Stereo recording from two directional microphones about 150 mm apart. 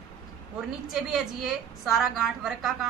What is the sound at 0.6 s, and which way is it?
A woman's voice, 5° right (ahead or behind).